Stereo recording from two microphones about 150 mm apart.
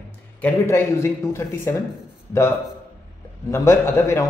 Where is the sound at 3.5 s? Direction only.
15° left (ahead or behind).